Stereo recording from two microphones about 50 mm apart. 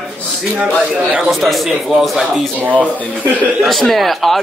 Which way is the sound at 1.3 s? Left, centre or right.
Centre.